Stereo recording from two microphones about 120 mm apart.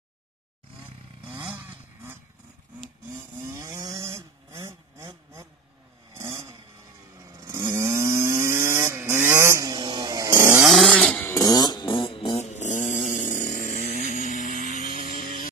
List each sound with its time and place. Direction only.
3.5 s cattle: 25° right (ahead or behind)
6.1 s vehicle: 25° right (ahead or behind)
7.2 s chainsaw: 30° right (ahead or behind)
10.6 s chainsaw: centre (ahead or behind)
11.2 s a sound: 30° left (ahead or behind); by 15.0 s 90° left